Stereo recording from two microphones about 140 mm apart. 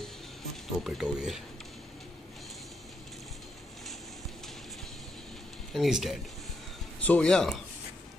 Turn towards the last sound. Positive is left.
turn(degrees=5)  # may be behind; listen again after turning